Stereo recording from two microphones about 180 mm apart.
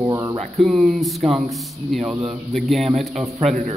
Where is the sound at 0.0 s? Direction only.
20° right (ahead or behind).